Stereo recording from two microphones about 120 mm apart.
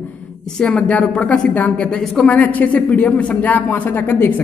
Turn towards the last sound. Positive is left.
turn(degrees=15)  # may be behind; listen again after turning